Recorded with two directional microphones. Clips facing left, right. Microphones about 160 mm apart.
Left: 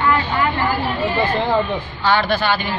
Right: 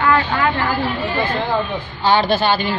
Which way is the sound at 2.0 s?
30° right (ahead or behind).